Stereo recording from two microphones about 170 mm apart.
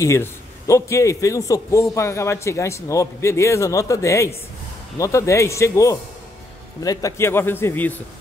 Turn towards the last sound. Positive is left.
turn(degrees=10)  # may be behind; listen again after turning